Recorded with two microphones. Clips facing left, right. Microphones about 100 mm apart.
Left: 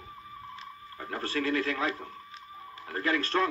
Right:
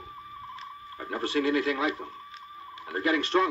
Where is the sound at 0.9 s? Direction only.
15° right (ahead or behind).